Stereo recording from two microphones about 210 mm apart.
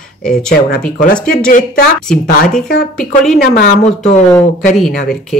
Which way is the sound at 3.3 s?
45° left (ahead or behind).